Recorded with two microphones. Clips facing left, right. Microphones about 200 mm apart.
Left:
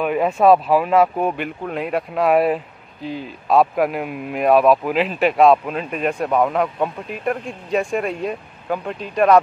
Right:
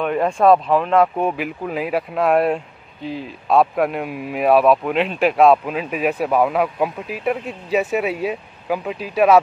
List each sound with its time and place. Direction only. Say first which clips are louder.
0.0 s speech: even; 5° left (ahead or behind)